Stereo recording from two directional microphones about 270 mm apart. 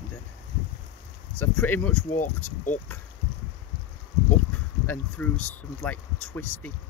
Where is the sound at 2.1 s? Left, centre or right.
Left.